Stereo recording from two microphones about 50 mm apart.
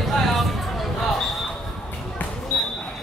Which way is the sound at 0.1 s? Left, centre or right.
Centre.